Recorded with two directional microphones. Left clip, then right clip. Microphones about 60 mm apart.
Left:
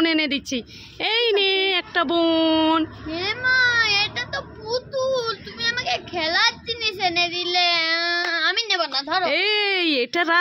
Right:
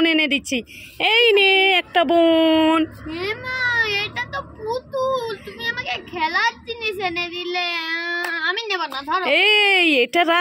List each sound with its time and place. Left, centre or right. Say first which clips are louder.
0.0 s speech: right 3 dB; right
1.1 s speech: right 5 dB; right
2.1 s speech: right 4 dB; centre
3.1 s a sound: left 4 dB; left
4.6 s child singing: right 1 dB; right
5.1 s a child's voice: even; left
7.8 s speech: left 2 dB; left
8.6 s a woman's voice: left 1 dB; left
9.2 s a woman's voice: right 7 dB; right